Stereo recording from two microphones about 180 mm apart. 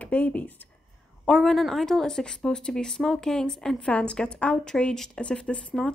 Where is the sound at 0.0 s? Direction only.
10° left (ahead or behind).